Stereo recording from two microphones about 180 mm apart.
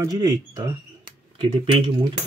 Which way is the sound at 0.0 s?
20° right (ahead or behind).